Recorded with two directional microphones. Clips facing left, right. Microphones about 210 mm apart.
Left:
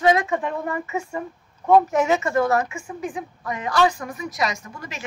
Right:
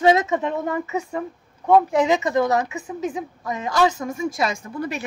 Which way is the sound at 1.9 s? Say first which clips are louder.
Right 1 dB; 15° right (ahead or behind).